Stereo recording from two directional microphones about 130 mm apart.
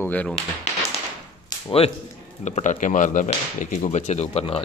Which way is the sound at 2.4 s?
70° left (ahead or behind).